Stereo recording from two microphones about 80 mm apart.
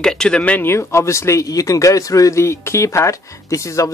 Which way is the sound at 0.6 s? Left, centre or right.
Left.